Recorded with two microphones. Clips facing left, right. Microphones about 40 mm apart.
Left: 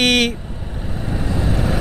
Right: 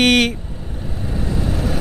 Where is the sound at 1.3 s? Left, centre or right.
Centre.